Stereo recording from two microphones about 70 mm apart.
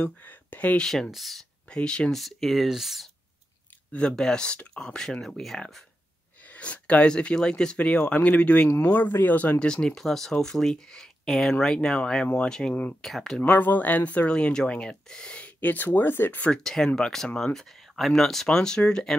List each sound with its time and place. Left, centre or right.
0.0 s speech: left
0.8 s speech: centre
1.7 s speech: centre
2.1 s speech: centre
3.9 s speech: centre
6.4 s speech: left; by 13.4 s centre
13.4 s speech: left
16.5 s speech: centre